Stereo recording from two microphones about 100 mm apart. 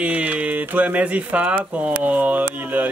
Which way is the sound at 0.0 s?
15° right (ahead or behind).